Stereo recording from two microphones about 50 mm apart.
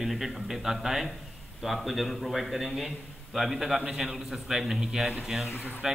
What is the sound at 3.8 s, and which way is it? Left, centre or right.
A man's voice, centre.